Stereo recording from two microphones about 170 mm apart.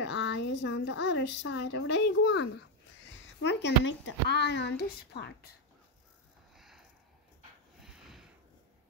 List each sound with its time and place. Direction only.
0.0 s a woman's voice: 90° left
3.4 s a woman's voice: 90° left; by 5.5 s 70° left (ahead or behind)
6.5 s a sound: centre (ahead or behind)